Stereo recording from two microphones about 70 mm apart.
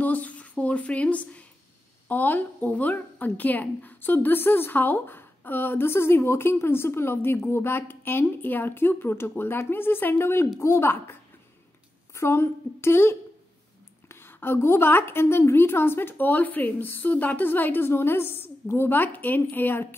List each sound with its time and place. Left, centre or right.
0.0 s a sound: left
2.0 s a woman's voice: left
12.2 s a woman's voice: left